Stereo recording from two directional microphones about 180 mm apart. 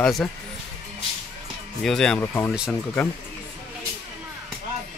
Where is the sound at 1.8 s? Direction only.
Centre (ahead or behind).